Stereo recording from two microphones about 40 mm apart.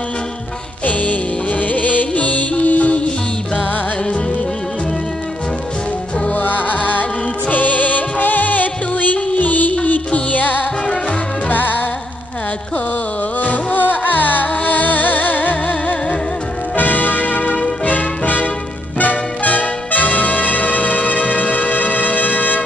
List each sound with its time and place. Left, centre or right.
0.8 s music: left
6.3 s music: left
13.4 s music: left
18.9 s trumpet: left